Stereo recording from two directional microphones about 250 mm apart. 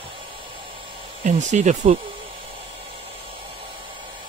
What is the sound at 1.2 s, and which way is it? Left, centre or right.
Speech, right.